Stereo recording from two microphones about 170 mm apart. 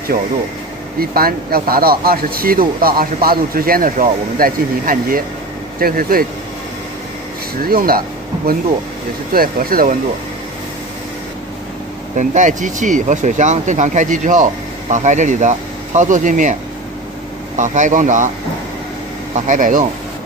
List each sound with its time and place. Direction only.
0.9 s speech: 60° right (ahead or behind)
7.6 s speech: 60° right (ahead or behind)
9.3 s speech: 60° right (ahead or behind)
12.2 s speech: 45° right (ahead or behind)
17.6 s speech: 45° right (ahead or behind)
19.3 s speech: 45° right (ahead or behind)